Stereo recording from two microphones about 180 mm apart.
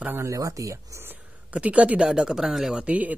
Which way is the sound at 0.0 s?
15° right (ahead or behind).